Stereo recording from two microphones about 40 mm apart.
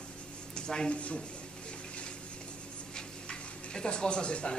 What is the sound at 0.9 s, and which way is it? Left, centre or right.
Speech, left.